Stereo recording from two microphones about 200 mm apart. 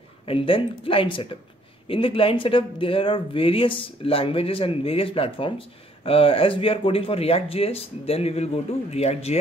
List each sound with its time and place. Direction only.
0.2 s speech: 25° left (ahead or behind)